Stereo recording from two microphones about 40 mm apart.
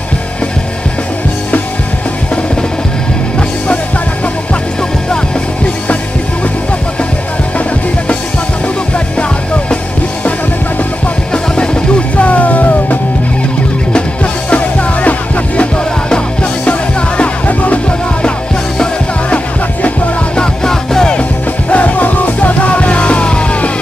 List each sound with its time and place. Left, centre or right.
3.3 s music: left
11.3 s music: left
12.3 s music: left
14.5 s music: left
17.2 s music: left
20.3 s music: centre
21.2 s music: left